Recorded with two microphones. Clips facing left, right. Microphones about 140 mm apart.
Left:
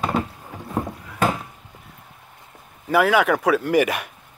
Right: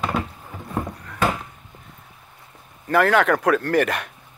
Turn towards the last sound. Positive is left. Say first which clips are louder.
# left 1 dB
turn(degrees=10)  # may be behind; listen again after turning